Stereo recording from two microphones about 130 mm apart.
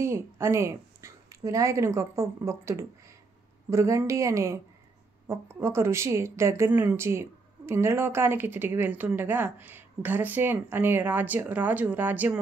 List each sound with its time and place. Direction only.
0.0 s a woman's voice: 20° right (ahead or behind)